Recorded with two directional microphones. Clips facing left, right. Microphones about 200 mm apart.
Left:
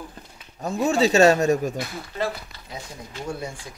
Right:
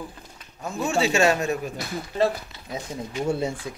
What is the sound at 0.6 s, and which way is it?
Speech, 35° left (ahead or behind).